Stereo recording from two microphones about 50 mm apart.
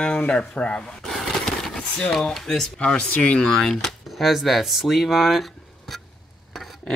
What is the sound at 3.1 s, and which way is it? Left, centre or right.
Speech, left.